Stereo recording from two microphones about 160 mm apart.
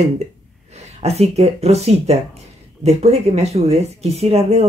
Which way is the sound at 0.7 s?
40° right (ahead or behind).